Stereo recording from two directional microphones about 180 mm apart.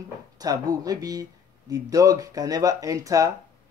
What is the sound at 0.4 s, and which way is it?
Speech, 20° right (ahead or behind).